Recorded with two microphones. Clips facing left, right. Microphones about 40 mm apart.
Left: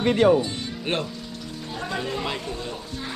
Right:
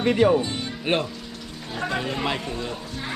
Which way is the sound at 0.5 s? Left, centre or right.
Centre.